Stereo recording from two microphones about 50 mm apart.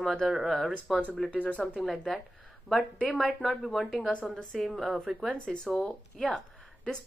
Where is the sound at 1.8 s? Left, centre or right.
Centre.